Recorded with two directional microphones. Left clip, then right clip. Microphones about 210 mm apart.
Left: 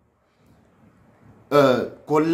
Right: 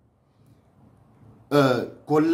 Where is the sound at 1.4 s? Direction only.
10° right (ahead or behind).